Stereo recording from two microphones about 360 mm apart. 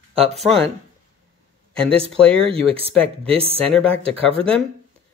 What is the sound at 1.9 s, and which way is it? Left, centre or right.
Speech, centre.